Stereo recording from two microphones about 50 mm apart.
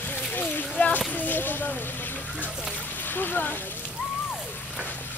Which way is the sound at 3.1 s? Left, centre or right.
Left.